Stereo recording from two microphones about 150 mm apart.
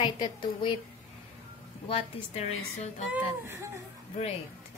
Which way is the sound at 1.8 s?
40° left (ahead or behind).